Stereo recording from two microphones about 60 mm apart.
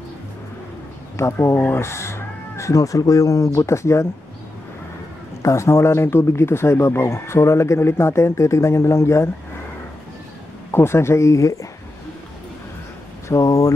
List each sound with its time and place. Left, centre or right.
1.1 s speech: left
5.4 s speech: left
10.7 s speech: left
13.3 s speech: left